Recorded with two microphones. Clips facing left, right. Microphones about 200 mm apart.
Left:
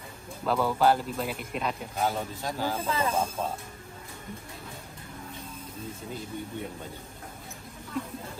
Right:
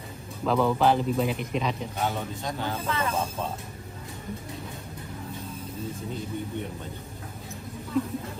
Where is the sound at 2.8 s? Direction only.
30° left (ahead or behind).